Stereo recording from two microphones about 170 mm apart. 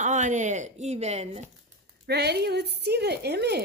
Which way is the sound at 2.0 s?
75° right (ahead or behind).